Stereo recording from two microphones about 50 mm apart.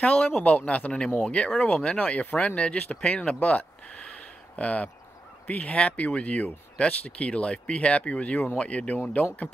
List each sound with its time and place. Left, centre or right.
0.0 s speech: left